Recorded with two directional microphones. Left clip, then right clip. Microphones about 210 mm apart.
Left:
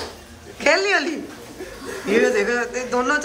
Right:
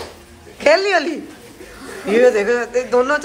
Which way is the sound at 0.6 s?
Centre (ahead or behind).